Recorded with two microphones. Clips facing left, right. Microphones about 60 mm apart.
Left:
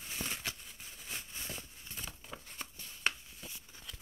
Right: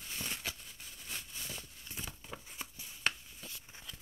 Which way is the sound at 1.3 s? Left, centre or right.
Left.